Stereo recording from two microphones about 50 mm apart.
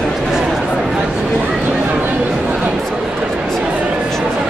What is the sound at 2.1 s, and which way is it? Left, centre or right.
Chatter, right.